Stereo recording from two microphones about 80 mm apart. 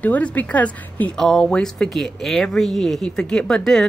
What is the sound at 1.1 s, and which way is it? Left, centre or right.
Speech, centre.